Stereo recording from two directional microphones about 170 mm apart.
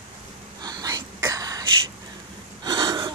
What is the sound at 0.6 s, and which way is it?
Whispering, 25° right (ahead or behind).